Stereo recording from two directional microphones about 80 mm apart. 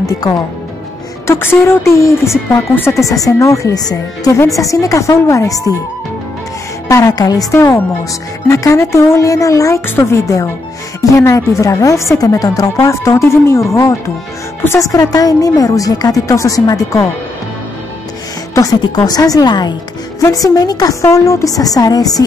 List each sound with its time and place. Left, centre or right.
0.0 s a woman's voice: left
1.2 s a woman's voice: left
6.9 s a woman's voice: left
8.5 s speech: left
14.8 s a woman's voice: left
18.9 s a woman's voice: left
20.2 s a woman's voice: left